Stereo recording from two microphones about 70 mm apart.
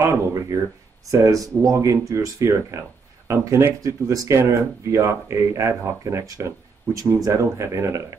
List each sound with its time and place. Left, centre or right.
0.1 s speech: right
3.8 s speech: right